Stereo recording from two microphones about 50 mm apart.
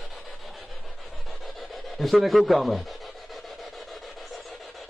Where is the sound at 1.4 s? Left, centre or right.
Centre.